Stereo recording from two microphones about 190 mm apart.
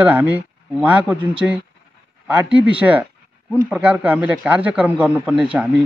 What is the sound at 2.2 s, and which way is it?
Speech, 5° right (ahead or behind).